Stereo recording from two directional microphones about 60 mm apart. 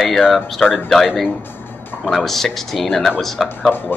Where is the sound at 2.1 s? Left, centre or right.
Centre.